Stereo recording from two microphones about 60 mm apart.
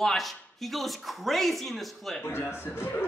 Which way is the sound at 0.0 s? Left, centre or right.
Centre.